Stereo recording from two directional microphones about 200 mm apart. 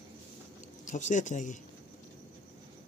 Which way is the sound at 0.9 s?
40° left (ahead or behind).